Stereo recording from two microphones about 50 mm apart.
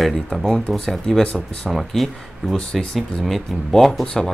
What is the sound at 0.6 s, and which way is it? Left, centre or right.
Speech, centre.